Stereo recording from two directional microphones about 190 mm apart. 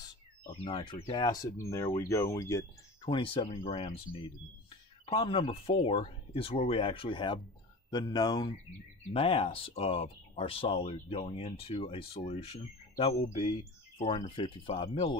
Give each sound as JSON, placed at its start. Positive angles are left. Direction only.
{"t": 0.5, "sound": "speech", "side_deg": 25}